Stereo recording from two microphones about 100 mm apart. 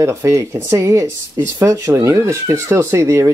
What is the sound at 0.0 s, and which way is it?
Speech, 30° right (ahead or behind).